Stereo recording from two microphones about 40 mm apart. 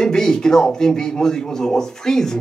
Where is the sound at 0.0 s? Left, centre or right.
Centre.